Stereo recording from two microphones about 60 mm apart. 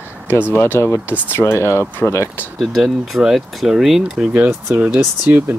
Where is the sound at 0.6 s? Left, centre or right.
Left.